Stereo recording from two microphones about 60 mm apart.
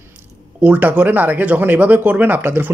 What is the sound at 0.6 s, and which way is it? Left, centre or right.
Speech, right.